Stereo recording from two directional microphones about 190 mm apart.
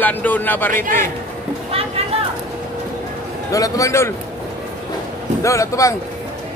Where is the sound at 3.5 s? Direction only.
20° left (ahead or behind).